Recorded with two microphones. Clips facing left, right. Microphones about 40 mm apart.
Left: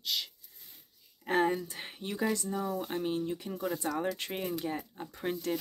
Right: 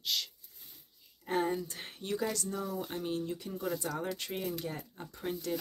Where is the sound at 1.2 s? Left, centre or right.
Left.